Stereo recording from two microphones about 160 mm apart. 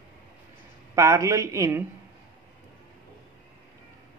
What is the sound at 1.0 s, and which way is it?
Speech, 20° right (ahead or behind).